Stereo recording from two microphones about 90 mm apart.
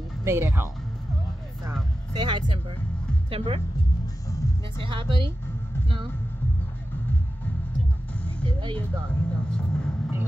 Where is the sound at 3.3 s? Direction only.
90° right.